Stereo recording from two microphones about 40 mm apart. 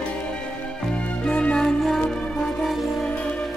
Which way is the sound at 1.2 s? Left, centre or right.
Left.